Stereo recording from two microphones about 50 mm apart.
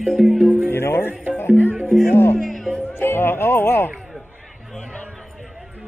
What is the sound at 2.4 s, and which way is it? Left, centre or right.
Music, centre.